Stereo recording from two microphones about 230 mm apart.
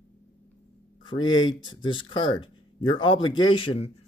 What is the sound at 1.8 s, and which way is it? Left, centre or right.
A man's voice, left.